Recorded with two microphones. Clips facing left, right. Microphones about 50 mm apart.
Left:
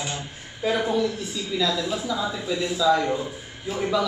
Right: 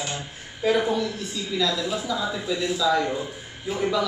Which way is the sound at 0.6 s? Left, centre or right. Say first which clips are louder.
Right 1 dB; centre.